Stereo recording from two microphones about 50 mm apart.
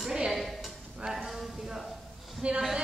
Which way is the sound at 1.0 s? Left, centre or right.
Centre.